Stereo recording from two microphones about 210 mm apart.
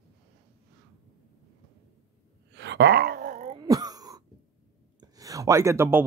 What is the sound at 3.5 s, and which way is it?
Wail, 15° right (ahead or behind).